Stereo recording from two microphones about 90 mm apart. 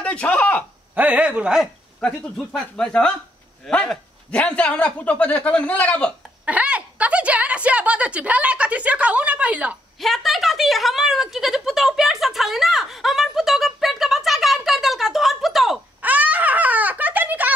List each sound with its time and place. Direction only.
0.0 s a man's voice: 10° left (ahead or behind)
0.9 s a woman's voice: 15° right (ahead or behind)
2.0 s a man's voice: 10° left (ahead or behind)
6.4 s a woman's voice: 15° right (ahead or behind)
9.9 s speech: centre (ahead or behind)
16.0 s baby laughter: 15° right (ahead or behind)